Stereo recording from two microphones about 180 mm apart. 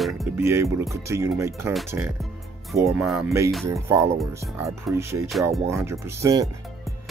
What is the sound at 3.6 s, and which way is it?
Speech, 15° right (ahead or behind).